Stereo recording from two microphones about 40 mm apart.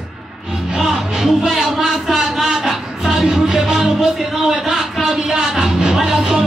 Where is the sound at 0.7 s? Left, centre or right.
Centre.